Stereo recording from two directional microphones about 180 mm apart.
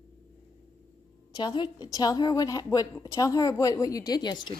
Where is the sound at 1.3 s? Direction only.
25° left (ahead or behind).